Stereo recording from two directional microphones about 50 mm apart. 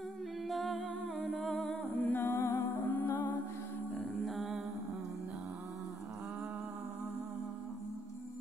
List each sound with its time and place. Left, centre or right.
0.5 s humming: centre
1.5 s humming: centre
2.0 s music: left
4.2 s a sound: centre